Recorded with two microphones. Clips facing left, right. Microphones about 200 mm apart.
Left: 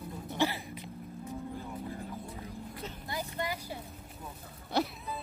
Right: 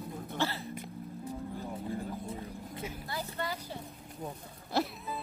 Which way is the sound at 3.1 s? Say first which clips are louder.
Left 3 dB; 15° left (ahead or behind).